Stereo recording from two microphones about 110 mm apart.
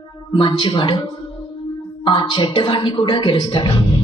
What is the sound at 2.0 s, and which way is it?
A woman's voice, 50° left (ahead or behind).